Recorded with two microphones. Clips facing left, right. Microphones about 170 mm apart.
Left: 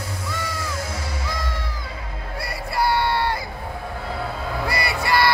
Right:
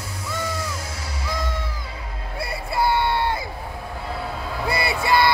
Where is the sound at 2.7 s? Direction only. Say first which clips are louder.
Even; 20° right (ahead or behind).